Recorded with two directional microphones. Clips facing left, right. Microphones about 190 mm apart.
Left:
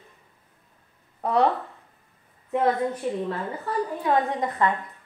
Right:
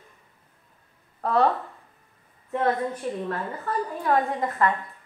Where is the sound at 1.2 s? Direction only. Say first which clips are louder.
Even; 15° left (ahead or behind).